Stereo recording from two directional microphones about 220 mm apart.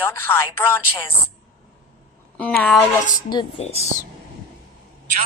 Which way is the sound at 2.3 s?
5° left (ahead or behind).